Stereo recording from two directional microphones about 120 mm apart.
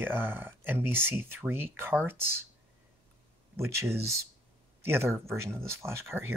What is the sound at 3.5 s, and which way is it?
Speech, 20° right (ahead or behind).